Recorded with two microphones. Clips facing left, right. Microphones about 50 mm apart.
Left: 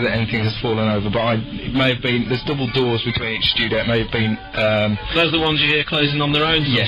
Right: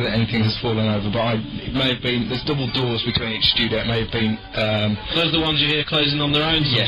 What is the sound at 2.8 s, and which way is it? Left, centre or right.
Speech, left.